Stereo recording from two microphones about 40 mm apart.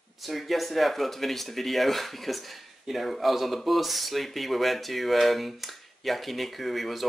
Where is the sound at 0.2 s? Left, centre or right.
Centre.